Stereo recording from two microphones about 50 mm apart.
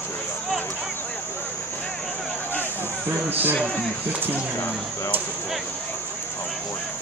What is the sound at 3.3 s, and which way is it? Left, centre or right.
Speech, right.